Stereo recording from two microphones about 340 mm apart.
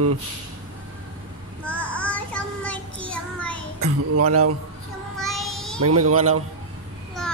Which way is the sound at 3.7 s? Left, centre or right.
Right.